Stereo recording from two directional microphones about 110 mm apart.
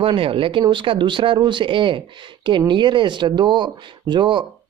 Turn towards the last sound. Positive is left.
turn(degrees=-45)  # may be behind; listen again after turning